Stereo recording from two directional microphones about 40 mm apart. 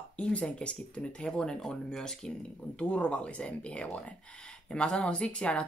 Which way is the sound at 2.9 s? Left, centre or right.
Left.